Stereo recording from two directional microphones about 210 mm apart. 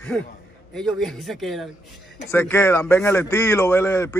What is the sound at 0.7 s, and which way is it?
A man's voice, centre (ahead or behind).